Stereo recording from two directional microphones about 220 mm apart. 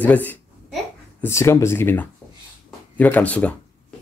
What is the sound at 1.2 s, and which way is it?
Speech, 10° left (ahead or behind).